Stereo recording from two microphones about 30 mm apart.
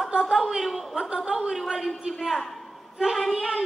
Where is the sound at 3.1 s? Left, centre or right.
Centre.